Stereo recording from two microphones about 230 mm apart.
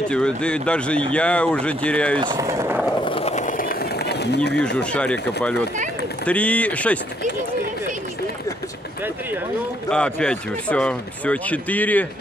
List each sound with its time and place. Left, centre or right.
0.1 s speech: centre
2.1 s speech: centre
3.1 s skateboard: left
4.7 s speech: centre
9.8 s speech: centre